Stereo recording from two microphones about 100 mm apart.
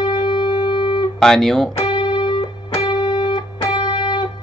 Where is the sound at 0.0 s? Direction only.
50° left (ahead or behind).